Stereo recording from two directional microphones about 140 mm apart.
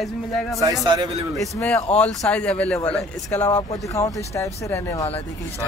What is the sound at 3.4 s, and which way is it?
Speech, 20° left (ahead or behind).